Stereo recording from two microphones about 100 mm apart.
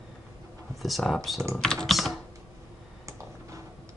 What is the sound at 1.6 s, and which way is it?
Computer keyboard, 5° left (ahead or behind).